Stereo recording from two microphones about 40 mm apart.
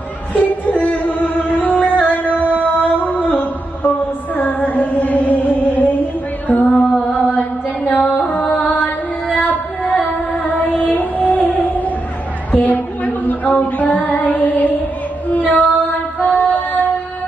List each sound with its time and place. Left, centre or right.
0.3 s music: left
2.6 s mantra: left
4.4 s chant: left
7.8 s music: left
15.2 s female singing: left
16.2 s music: left